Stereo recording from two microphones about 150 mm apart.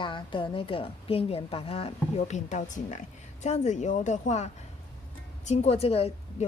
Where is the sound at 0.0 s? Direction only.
35° left (ahead or behind).